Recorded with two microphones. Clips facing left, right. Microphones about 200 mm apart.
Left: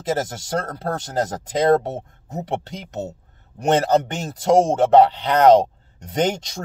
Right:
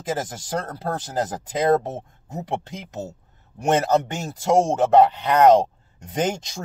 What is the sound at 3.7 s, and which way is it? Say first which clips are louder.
Speech: left 2 dB; 35° left (ahead or behind).